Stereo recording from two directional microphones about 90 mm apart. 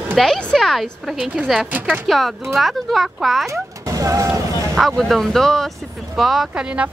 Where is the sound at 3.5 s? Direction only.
35° right (ahead or behind).